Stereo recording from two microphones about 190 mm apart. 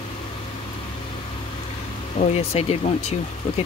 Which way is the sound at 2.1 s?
35° left (ahead or behind).